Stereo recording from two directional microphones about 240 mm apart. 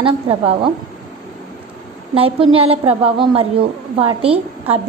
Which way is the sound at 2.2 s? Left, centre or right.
Right.